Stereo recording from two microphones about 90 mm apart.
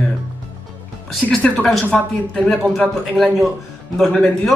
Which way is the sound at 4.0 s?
5° left (ahead or behind).